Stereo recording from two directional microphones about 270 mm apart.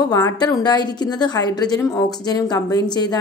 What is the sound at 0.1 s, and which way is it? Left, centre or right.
Speech, centre.